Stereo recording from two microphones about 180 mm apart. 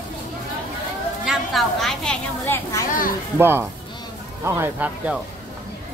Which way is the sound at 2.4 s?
15° left (ahead or behind).